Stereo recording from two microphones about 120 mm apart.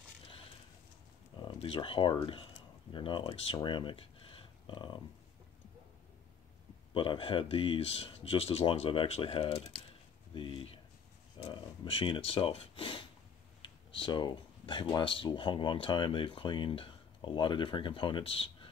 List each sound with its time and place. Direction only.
1.4 s speech: 45° left (ahead or behind)
6.9 s speech: 45° left (ahead or behind)
11.3 s speech: 40° left (ahead or behind)